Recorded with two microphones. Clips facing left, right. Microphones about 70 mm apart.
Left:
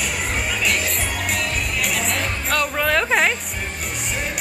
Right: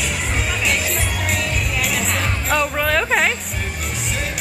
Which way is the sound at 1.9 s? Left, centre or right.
Centre.